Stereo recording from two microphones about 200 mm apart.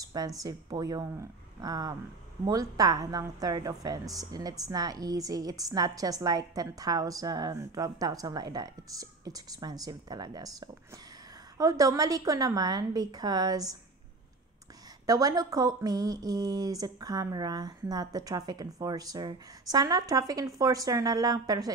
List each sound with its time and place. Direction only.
0.0 s a woman's voice: 20° right (ahead or behind)
11.5 s speech: 15° right (ahead or behind)
15.0 s speech: 15° right (ahead or behind)